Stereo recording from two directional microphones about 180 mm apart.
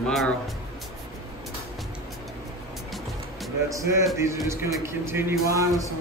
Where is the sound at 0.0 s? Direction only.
Centre (ahead or behind).